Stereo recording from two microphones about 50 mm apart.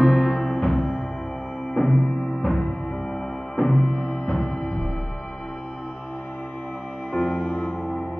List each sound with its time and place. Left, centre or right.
0.0 s music: centre
0.4 s music: centre
7.1 s music: centre